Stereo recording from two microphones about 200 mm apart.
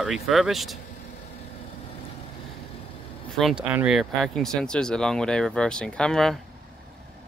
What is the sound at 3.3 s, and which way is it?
Speech, centre (ahead or behind).